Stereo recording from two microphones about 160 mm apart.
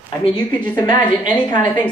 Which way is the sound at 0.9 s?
30° left (ahead or behind).